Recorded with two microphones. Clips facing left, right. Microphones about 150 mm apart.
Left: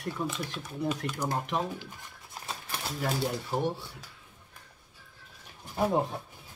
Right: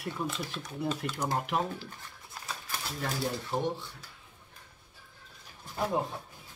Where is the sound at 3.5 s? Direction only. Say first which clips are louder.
Even; 10° left (ahead or behind).